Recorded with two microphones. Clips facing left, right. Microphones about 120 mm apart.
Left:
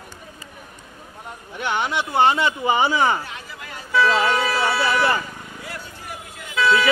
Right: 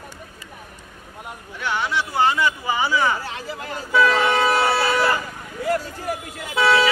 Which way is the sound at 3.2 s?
35° right (ahead or behind).